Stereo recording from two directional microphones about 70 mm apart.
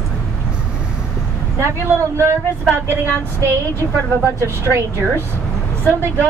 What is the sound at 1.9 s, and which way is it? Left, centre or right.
Speech, right.